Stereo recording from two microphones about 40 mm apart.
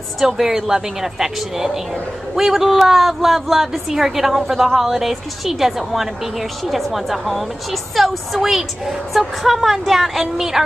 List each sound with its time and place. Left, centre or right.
0.2 s a woman's voice: centre